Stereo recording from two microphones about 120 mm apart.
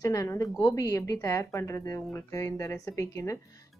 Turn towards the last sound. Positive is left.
turn(degrees=25)  # may be behind; listen again after turning